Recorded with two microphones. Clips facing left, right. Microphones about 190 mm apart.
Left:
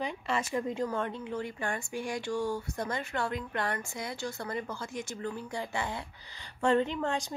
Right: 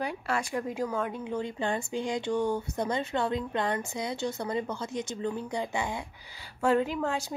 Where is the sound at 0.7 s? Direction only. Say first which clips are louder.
Right 1 dB; 5° right (ahead or behind).